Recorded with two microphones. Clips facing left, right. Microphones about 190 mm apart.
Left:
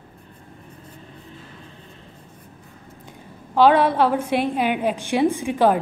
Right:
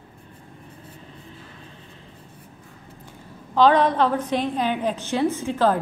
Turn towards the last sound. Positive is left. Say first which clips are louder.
# left 3 dB
turn(degrees=15)  # may be behind; listen again after turning